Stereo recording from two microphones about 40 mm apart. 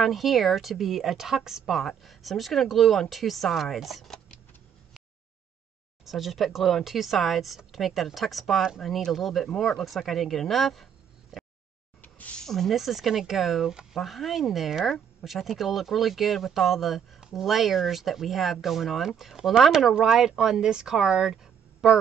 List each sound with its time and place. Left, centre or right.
0.0 s speech: centre
1.8 s speech: centre
6.0 s speech: centre
12.0 s a sound: left
12.4 s speech: centre